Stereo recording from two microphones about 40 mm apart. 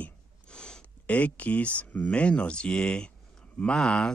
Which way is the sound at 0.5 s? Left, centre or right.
Centre.